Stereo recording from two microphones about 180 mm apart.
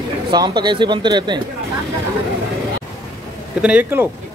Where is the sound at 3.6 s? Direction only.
10° right (ahead or behind).